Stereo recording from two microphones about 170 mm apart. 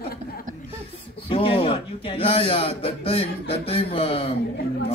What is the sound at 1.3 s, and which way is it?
Speech, 30° left (ahead or behind).